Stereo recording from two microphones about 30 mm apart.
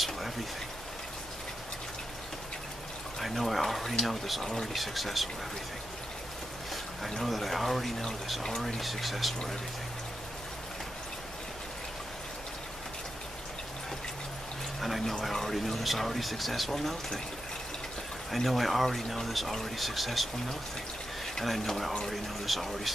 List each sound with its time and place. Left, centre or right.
3.2 s speech: centre
4.4 s speech: left
4.7 s speech: centre
7.2 s speech: centre
8.4 s speech: centre
8.8 s speech: centre
14.8 s speech: centre
18.3 s speech: centre
21.5 s speech: centre